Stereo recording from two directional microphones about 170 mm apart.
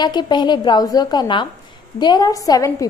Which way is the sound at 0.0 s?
25° left (ahead or behind).